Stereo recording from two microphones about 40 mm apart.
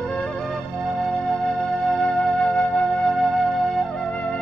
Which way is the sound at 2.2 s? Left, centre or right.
Centre.